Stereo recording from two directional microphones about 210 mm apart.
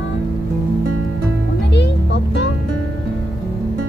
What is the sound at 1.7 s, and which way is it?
Music, 55° left (ahead or behind).